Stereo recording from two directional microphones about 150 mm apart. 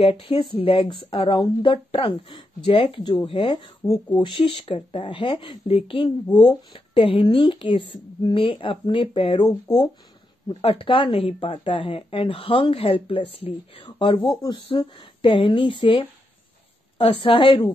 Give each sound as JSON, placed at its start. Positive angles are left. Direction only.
{"t": 0.0, "sound": "a woman's voice", "side_deg": 35}
{"t": 10.5, "sound": "a woman's voice", "side_deg": 40}